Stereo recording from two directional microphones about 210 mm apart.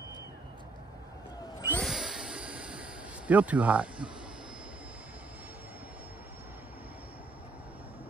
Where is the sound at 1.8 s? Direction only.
Centre (ahead or behind).